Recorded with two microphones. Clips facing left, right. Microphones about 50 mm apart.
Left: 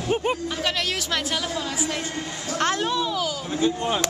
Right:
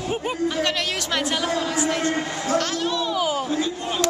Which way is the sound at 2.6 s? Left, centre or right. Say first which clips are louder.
Left 2 dB; left.